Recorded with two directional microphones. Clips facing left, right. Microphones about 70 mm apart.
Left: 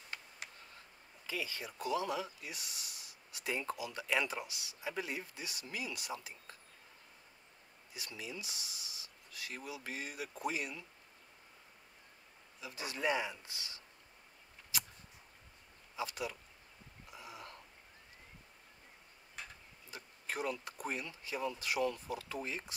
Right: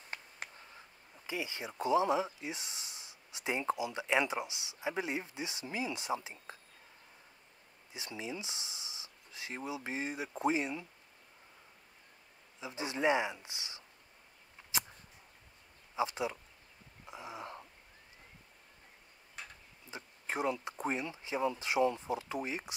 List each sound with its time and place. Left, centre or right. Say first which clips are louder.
1.2 s speech: right 2 dB; right
7.9 s speech: right 4 dB; right
12.5 s speech: right 5 dB; right
14.7 s a sound: right 4 dB; right
16.0 s speech: right 6 dB; right
17.0 s a sound: right 6 dB; right
19.4 s tick-tock: right 1 dB; centre
19.9 s speech: right 3 dB; right